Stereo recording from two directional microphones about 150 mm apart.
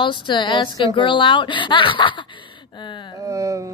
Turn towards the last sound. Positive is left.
turn(degrees=-20)  # may be behind; listen again after turning